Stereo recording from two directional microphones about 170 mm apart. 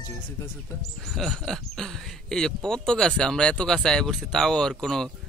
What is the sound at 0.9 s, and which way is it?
Speech, centre (ahead or behind).